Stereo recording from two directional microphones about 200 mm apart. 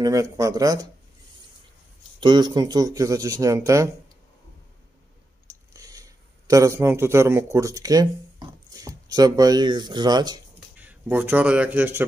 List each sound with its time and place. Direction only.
0.0 s speech: 15° right (ahead or behind)
2.1 s speech: 20° right (ahead or behind)
5.5 s a sound: 15° right (ahead or behind)
6.5 s speech: 15° right (ahead or behind)
10.8 s speech: 10° right (ahead or behind)